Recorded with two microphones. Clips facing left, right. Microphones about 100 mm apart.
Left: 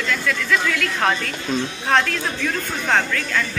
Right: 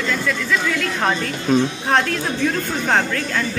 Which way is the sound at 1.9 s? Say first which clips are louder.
Left 2 dB; 20° right (ahead or behind).